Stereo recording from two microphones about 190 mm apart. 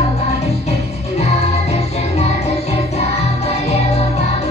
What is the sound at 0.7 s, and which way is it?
Music, 35° left (ahead or behind).